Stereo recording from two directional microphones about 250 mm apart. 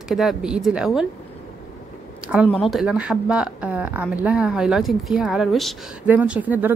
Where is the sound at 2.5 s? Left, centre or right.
Centre.